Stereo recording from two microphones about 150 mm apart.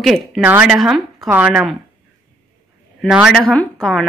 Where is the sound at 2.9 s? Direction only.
5° right (ahead or behind).